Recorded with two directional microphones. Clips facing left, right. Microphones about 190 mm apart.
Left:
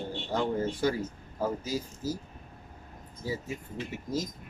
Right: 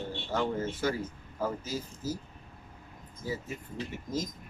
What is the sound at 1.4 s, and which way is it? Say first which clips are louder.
Speech: left 2 dB; 10° left (ahead or behind).